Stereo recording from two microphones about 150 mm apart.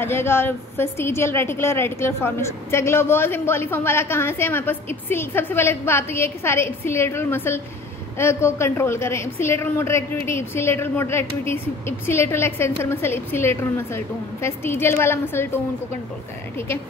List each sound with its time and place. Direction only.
0.0 s a woman's voice: 15° left (ahead or behind)